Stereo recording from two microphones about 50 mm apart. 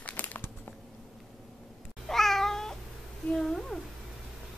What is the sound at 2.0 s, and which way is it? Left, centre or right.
Cat, centre.